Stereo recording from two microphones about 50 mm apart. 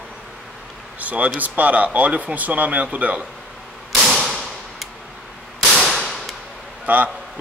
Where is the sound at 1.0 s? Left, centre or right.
Right.